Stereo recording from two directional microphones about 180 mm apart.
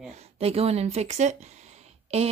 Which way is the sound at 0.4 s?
35° right (ahead or behind).